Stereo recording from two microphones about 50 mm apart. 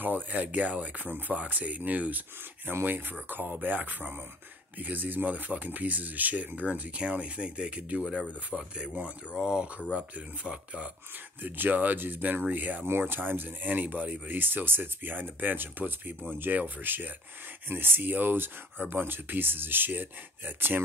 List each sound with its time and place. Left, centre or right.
0.0 s speech: right
11.4 s speech: right